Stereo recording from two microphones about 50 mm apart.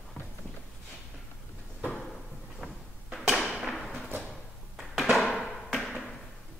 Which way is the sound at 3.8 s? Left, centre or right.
Centre.